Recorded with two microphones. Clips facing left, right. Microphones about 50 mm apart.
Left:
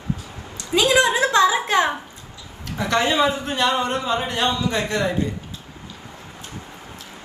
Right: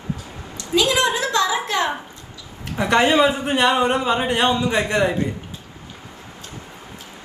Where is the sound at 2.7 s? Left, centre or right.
Right.